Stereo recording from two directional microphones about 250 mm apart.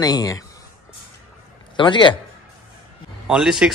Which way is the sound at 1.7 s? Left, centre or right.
Centre.